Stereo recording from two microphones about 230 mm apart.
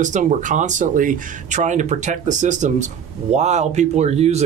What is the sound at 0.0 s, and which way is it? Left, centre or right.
Speech, right.